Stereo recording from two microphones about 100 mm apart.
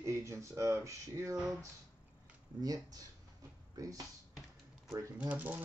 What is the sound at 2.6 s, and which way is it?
Speech, 40° right (ahead or behind).